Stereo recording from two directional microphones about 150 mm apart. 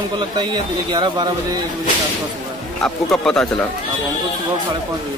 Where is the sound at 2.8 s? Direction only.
5° left (ahead or behind).